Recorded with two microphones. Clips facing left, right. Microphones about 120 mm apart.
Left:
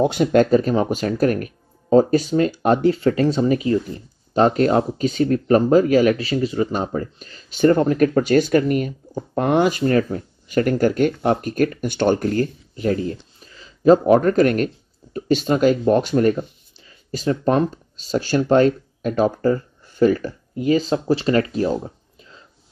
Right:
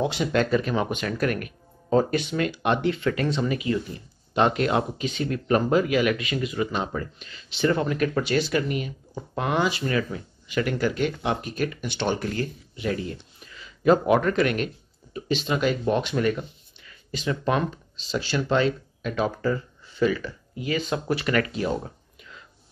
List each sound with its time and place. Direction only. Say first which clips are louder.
0.0 s speech: left 8 dB; 50° left (ahead or behind); by 21.5 s 30° left (ahead or behind)
21.5 s speech: left 6 dB; 40° left (ahead or behind)